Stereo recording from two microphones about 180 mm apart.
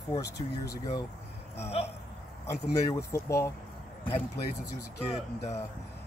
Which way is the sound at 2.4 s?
15° left (ahead or behind).